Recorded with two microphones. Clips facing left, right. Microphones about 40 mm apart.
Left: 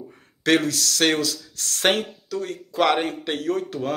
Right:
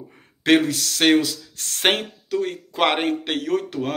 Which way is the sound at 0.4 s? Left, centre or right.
Right.